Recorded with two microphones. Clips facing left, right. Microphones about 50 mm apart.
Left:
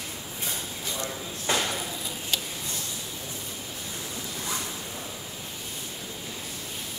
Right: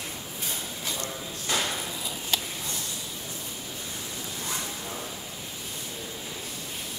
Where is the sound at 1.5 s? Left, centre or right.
Left.